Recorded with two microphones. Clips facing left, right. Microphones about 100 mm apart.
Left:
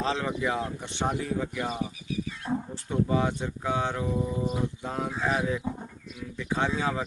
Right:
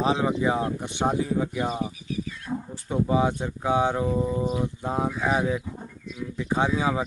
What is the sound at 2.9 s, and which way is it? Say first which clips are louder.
A man's voice: right 3 dB; 15° right (ahead or behind).